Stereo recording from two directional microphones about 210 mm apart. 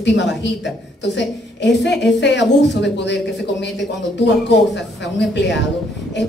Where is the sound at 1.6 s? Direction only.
55° left (ahead or behind).